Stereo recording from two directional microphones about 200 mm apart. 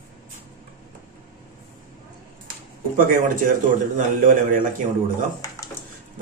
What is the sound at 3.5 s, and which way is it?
A man's voice, 40° right (ahead or behind).